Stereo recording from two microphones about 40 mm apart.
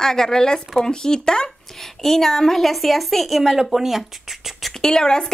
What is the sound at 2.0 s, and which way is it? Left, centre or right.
A woman's voice, centre.